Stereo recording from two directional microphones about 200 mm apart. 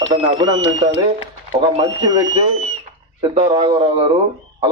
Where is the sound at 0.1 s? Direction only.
20° right (ahead or behind).